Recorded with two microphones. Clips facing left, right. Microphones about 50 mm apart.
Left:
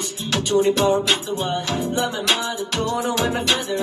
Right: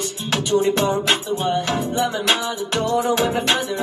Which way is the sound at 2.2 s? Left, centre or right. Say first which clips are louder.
Right 1 dB; right.